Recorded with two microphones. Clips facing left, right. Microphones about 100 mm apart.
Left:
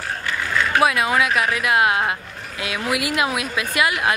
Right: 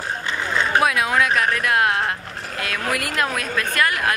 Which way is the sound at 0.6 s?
20° right (ahead or behind).